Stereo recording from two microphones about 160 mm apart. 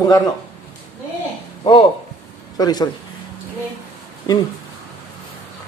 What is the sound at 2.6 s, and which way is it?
Speech, 25° left (ahead or behind).